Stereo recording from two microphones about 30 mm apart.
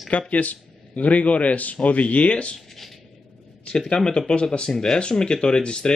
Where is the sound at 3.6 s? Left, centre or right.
Left.